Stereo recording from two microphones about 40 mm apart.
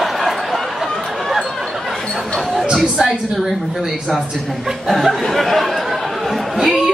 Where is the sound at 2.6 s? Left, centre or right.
Centre.